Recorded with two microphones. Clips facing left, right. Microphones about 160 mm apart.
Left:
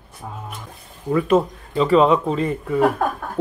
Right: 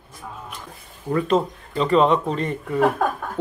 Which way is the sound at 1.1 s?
5° left (ahead or behind).